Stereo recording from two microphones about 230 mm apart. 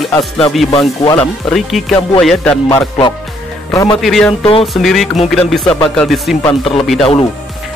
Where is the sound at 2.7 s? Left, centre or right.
Centre.